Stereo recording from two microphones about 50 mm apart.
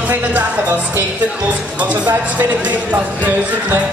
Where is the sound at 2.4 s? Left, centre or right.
Right.